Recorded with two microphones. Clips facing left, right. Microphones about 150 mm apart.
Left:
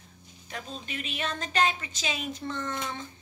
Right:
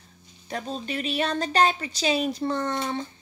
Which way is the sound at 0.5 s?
35° right (ahead or behind).